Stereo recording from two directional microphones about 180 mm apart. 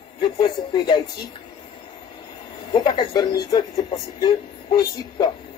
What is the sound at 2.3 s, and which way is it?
Speech, 25° left (ahead or behind).